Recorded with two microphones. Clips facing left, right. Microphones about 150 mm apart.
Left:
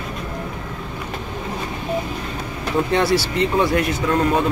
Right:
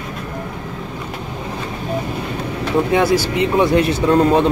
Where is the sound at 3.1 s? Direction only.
15° right (ahead or behind); by 4.4 s 30° right (ahead or behind).